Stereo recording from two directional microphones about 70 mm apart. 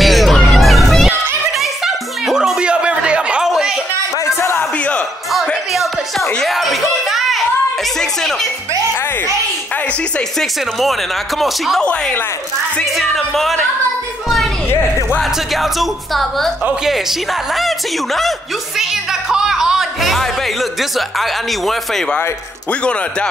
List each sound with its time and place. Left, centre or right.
0.0 s music: centre
4.4 s a sound: left
5.7 s music: centre
10.8 s a woman's voice: centre
11.8 s speech: left
12.9 s a woman's voice: centre
15.5 s a woman's voice: centre
17.6 s a woman's voice: centre
18.8 s music: centre
21.2 s a woman's voice: centre